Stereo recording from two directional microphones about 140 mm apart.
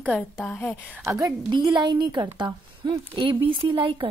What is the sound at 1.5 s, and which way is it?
A woman's voice, 30° right (ahead or behind).